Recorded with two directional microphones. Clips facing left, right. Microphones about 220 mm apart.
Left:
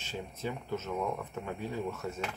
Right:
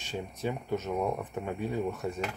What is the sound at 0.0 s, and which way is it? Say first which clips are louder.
Speech: right 4 dB; 15° right (ahead or behind).